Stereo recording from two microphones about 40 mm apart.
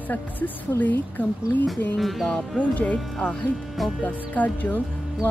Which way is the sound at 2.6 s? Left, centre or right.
Left.